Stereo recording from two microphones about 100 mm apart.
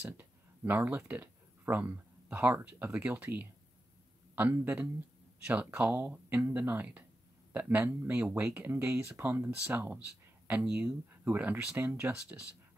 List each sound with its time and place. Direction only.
0.0 s speech: 20° right (ahead or behind)
11.2 s speech: 20° right (ahead or behind)